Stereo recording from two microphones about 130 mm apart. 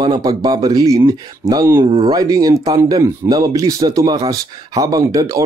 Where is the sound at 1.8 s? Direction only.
40° right (ahead or behind).